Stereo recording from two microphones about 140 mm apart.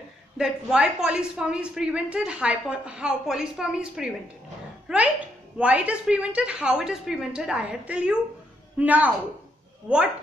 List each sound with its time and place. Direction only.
0.4 s a woman's voice: 5° right (ahead or behind)